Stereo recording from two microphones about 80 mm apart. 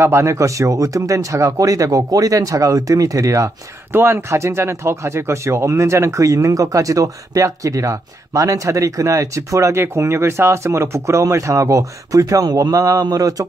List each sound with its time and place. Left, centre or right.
0.0 s speech: right
3.9 s speech: right